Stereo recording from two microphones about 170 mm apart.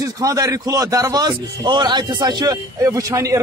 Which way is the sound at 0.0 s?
20° right (ahead or behind).